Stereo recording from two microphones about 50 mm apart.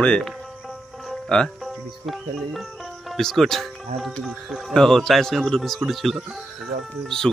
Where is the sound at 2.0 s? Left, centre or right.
Centre.